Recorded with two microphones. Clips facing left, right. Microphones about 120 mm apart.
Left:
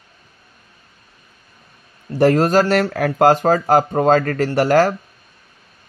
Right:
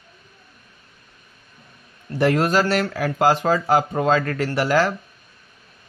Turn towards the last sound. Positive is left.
turn(degrees=45)  # may be behind; listen again after turning